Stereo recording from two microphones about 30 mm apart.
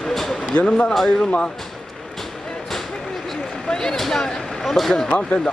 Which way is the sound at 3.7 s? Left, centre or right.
Left.